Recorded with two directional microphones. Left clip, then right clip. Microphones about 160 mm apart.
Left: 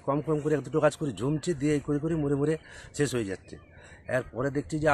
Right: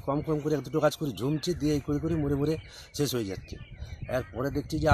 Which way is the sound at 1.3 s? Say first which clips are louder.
Left 1 dB; 5° left (ahead or behind).